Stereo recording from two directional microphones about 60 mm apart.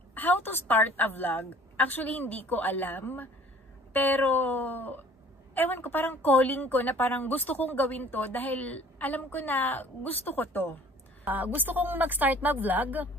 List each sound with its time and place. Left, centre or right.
0.1 s a woman's voice: left
11.3 s speech: right